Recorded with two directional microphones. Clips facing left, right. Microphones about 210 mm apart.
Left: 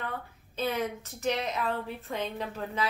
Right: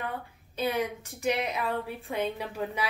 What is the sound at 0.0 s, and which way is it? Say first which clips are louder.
A woman's voice: right 1 dB; 15° right (ahead or behind).